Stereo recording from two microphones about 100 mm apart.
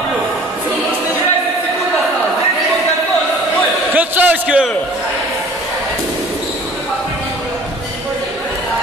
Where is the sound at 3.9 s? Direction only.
15° right (ahead or behind).